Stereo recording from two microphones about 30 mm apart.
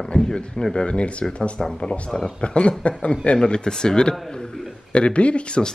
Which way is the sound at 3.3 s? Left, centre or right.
Left.